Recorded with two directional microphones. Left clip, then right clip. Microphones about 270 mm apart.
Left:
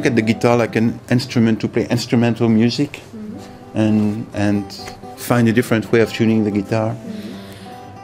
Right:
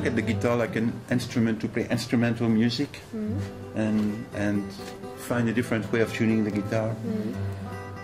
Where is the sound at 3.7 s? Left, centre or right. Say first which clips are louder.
Left 10 dB; left.